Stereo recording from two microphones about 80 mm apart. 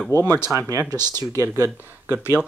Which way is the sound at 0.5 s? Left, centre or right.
Right.